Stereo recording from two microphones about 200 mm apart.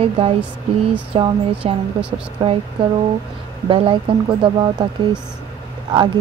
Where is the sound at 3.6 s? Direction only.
25° right (ahead or behind).